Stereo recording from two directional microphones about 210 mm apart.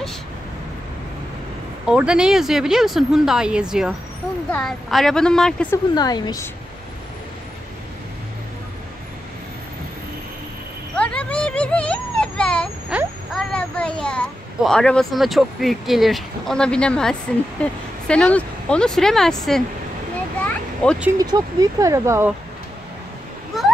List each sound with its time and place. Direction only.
1.9 s speech: 5° right (ahead or behind)
5.9 s a woman's voice: 20° left (ahead or behind)
11.0 s a sound: 5° left (ahead or behind)
12.9 s a child's voice: centre (ahead or behind)
20.4 s a sound: 5° left (ahead or behind)
21.2 s speech: 20° right (ahead or behind)